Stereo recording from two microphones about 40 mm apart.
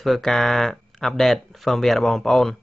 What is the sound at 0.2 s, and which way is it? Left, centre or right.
Speech, centre.